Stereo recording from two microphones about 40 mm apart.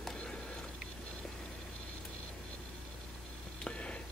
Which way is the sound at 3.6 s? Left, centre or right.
Left.